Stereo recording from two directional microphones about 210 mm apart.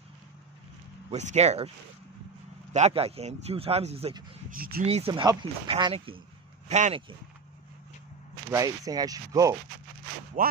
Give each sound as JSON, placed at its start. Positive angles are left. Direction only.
{"t": 1.1, "sound": "speech", "side_deg": -30}
{"t": 2.7, "sound": "speech", "side_deg": -30}
{"t": 4.6, "sound": "speech", "side_deg": -45}
{"t": 4.8, "sound": "speech", "side_deg": -25}
{"t": 8.5, "sound": "speech", "side_deg": -15}
{"t": 10.4, "sound": "speech", "side_deg": -40}